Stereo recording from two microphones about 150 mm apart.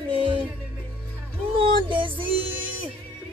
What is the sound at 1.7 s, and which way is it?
Music, 35° right (ahead or behind).